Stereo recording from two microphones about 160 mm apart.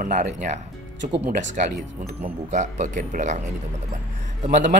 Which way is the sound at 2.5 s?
50° right (ahead or behind).